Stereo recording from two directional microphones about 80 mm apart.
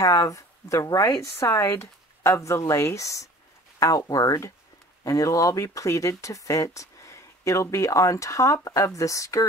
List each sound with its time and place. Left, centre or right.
0.0 s speech: left
1.3 s speech: left